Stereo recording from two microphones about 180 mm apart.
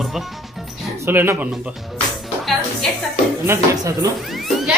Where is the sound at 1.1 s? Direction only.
10° right (ahead or behind).